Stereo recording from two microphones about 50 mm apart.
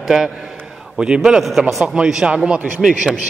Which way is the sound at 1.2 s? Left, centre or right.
Centre.